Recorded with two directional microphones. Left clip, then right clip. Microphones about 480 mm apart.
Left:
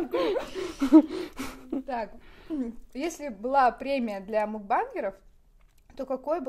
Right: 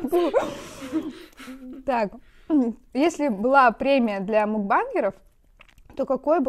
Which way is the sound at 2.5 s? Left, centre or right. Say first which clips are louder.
Right 12 dB; right.